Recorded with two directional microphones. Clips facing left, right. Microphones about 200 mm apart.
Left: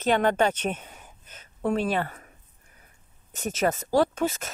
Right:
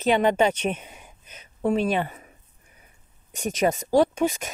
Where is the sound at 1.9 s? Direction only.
15° right (ahead or behind).